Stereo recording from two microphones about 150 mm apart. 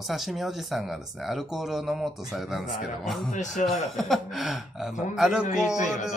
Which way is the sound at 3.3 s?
55° left (ahead or behind).